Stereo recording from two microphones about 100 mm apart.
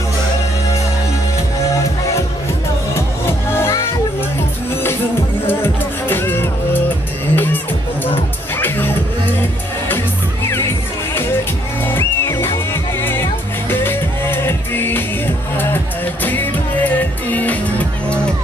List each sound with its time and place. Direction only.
2.9 s music: 25° left (ahead or behind)
5.5 s music: 20° left (ahead or behind)
11.8 s music: 25° left (ahead or behind)